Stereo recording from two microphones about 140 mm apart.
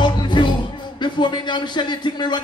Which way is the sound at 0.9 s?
35° left (ahead or behind).